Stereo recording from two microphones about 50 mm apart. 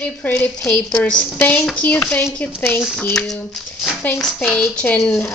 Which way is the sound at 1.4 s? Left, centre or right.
Left.